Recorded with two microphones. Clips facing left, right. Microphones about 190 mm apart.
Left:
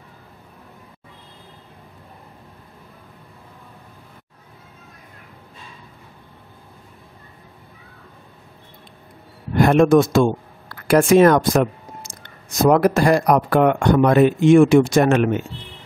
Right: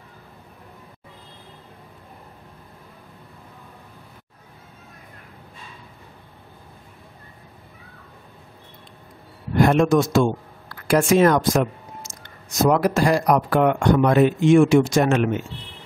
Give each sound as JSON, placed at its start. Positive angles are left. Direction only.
{"t": 9.6, "sound": "speech", "side_deg": 55}